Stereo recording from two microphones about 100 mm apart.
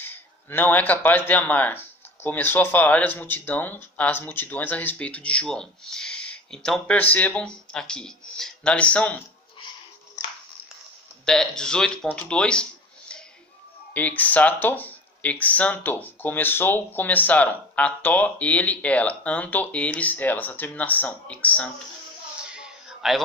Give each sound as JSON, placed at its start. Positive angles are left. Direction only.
{"t": 0.0, "sound": "speech", "side_deg": 20}
{"t": 11.2, "sound": "speech", "side_deg": 5}
{"t": 13.9, "sound": "speech", "side_deg": 15}
{"t": 22.5, "sound": "a sound", "side_deg": -5}